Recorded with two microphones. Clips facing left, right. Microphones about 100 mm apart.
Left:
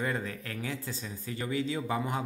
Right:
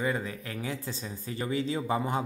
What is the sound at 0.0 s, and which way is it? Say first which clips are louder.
Speech: right 2 dB; 10° right (ahead or behind).